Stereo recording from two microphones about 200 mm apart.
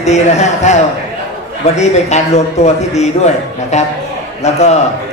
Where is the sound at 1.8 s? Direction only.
35° left (ahead or behind).